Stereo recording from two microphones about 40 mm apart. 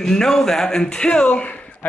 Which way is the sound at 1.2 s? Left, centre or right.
Left.